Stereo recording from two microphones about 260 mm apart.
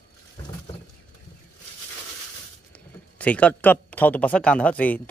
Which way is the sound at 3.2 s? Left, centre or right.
Centre.